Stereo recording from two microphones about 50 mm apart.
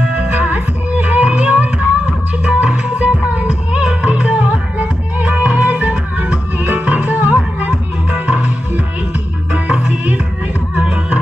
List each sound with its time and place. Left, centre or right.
0.0 s music: right